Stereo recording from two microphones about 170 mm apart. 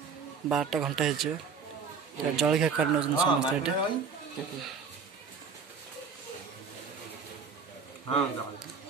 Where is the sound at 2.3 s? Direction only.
5° right (ahead or behind).